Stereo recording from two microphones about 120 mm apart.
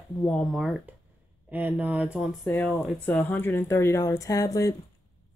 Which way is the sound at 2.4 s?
10° left (ahead or behind).